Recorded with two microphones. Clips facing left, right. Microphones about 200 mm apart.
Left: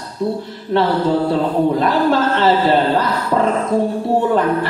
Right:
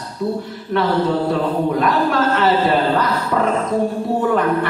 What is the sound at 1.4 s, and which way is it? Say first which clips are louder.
A man's voice: left 2 dB; 30° left (ahead or behind).